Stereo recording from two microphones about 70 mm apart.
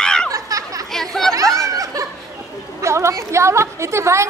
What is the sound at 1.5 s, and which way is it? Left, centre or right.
Snicker, right.